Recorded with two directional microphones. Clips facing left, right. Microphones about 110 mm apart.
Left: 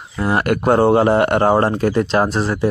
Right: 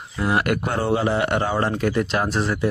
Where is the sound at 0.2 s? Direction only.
35° left (ahead or behind).